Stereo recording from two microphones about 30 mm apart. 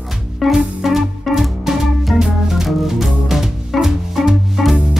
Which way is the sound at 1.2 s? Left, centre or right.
Centre.